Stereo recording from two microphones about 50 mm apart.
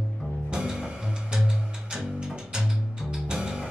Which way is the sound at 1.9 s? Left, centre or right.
Centre.